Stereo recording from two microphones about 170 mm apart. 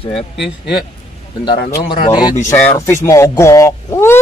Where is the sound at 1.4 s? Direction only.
25° left (ahead or behind).